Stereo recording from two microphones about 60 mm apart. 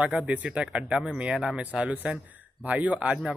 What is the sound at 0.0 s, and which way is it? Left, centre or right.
A man's voice, right.